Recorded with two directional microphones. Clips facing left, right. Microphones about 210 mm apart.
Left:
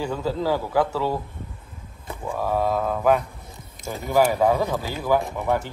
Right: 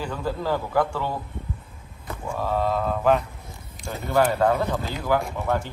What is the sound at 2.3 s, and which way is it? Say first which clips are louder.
Speech: left 1 dB; 10° left (ahead or behind).